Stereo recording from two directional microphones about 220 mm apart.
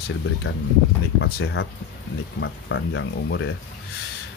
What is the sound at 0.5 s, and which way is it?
Speech, 75° left (ahead or behind).